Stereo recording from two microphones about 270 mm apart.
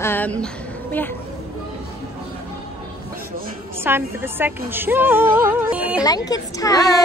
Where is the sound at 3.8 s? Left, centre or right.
Centre.